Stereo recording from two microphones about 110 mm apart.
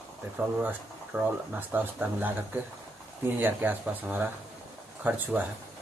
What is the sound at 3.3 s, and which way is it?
Speech, 15° right (ahead or behind).